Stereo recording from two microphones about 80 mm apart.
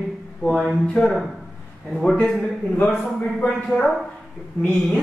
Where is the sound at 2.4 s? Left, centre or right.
Left.